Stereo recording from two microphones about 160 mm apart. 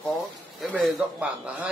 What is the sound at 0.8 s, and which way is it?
Speech, 10° right (ahead or behind).